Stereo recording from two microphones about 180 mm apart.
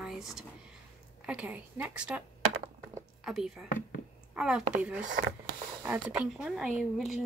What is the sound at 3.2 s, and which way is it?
A woman's voice, centre (ahead or behind).